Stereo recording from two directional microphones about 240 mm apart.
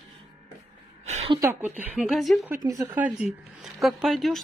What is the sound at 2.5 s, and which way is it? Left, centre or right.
Speech, centre.